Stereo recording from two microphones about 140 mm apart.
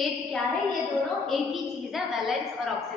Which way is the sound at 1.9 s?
Centre (ahead or behind).